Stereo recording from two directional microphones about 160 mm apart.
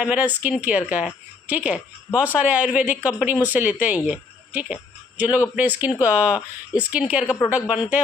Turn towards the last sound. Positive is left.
turn(degrees=-5)  # may be behind; listen again after turning